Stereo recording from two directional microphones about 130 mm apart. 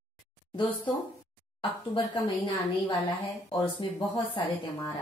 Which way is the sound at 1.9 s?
40° left (ahead or behind).